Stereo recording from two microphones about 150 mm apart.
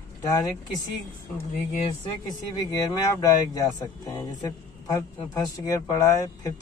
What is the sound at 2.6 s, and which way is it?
Speech, 25° left (ahead or behind).